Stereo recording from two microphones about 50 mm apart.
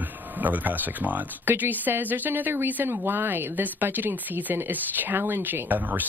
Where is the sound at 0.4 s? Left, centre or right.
Right.